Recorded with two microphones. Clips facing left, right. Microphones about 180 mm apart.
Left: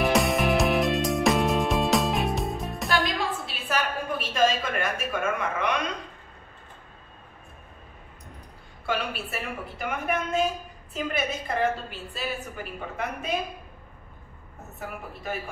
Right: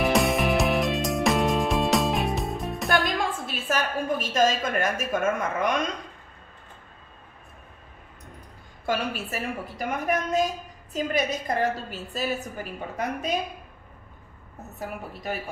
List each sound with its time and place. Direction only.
0.0 s music: centre (ahead or behind)
3.2 s a sound: 45° right (ahead or behind)
8.8 s a woman's voice: 40° right (ahead or behind)